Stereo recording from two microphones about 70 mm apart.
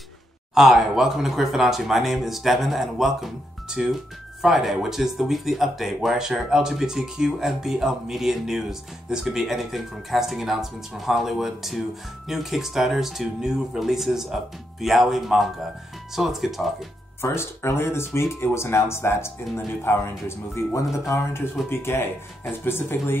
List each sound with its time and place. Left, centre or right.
0.6 s speech: centre
17.2 s speech: left